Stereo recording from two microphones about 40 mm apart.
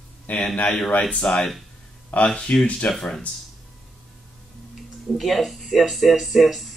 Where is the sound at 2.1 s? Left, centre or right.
Left.